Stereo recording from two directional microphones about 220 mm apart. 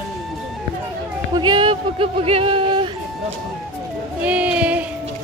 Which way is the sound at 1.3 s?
20° right (ahead or behind).